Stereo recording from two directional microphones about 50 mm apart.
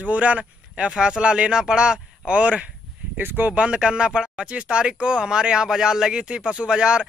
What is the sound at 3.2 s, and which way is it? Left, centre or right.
Speech, right.